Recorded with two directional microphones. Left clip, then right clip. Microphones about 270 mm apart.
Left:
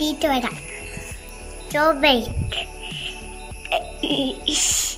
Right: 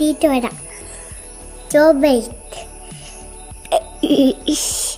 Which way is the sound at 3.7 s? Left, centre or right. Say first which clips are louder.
Right 6 dB; right.